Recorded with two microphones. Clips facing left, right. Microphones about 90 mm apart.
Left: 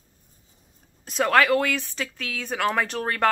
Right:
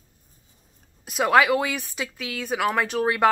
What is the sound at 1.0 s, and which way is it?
A woman's voice, 10° right (ahead or behind).